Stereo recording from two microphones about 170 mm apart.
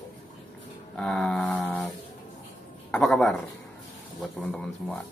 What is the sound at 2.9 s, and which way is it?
Speech, centre (ahead or behind).